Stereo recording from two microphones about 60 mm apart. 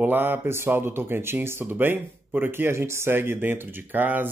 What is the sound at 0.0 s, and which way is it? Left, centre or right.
Speech, right.